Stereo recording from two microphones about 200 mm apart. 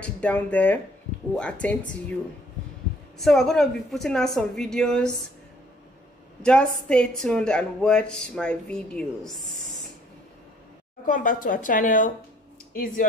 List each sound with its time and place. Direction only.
0.0 s speech: 5° left (ahead or behind)
3.2 s a woman's voice: centre (ahead or behind)
6.4 s a woman's voice: 5° left (ahead or behind)
11.1 s a woman's voice: 40° left (ahead or behind)